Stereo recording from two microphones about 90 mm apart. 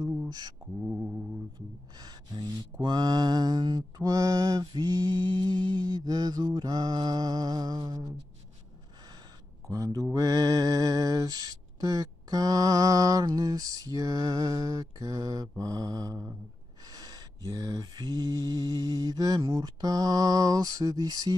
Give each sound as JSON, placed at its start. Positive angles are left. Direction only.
{"t": 0.3, "sound": "speech", "side_deg": -50}
{"t": 2.0, "sound": "mantra", "side_deg": -50}
{"t": 4.0, "sound": "mantra", "side_deg": -40}
{"t": 9.7, "sound": "a sound", "side_deg": -40}
{"t": 13.4, "sound": "mantra", "side_deg": -40}